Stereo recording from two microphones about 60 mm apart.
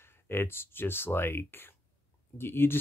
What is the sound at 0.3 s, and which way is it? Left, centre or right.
Speech, left.